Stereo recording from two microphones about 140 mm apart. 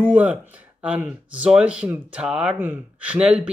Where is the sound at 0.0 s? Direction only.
10° right (ahead or behind).